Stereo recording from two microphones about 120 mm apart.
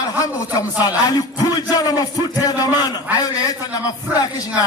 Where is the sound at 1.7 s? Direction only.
30° left (ahead or behind).